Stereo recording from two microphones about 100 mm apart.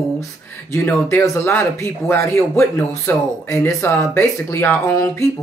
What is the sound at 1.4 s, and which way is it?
A man's voice, 25° left (ahead or behind).